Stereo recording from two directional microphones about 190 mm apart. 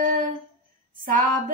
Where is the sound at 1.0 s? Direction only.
45° right (ahead or behind).